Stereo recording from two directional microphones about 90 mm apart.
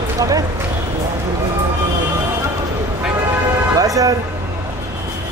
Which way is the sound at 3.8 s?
40° right (ahead or behind).